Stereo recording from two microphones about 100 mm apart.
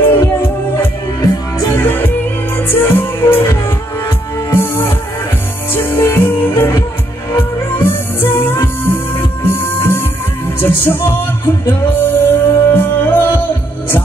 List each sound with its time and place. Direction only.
1.8 s music: 20° left (ahead or behind)